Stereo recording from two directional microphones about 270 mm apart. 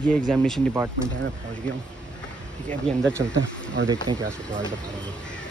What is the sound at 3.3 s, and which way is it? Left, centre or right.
Speech, right.